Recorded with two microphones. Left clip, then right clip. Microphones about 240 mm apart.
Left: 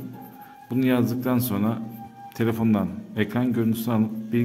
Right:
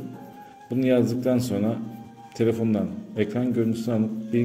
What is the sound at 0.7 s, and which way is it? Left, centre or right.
A man's voice, left.